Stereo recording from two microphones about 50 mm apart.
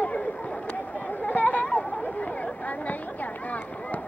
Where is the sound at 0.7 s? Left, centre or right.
Left.